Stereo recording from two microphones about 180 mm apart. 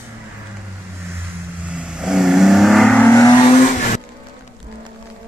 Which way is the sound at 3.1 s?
20° left (ahead or behind).